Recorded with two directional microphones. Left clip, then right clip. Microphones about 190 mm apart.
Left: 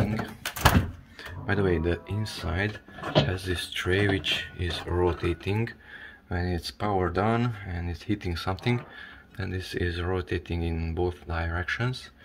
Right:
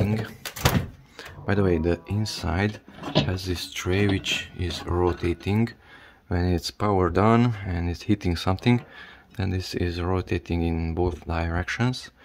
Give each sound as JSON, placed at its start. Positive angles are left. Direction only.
{"t": 1.5, "sound": "speech", "side_deg": -40}